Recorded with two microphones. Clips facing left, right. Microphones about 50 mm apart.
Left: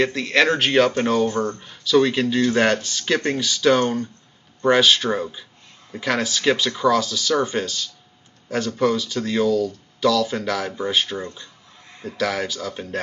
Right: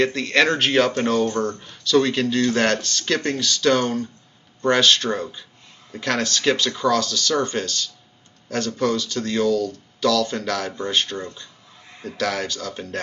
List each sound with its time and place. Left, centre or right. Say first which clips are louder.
0.0 s speech: even; centre